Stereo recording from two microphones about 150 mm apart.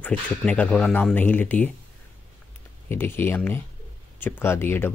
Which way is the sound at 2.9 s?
15° left (ahead or behind).